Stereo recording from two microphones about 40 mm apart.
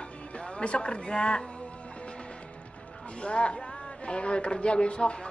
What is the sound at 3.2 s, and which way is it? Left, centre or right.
A man's voice, left.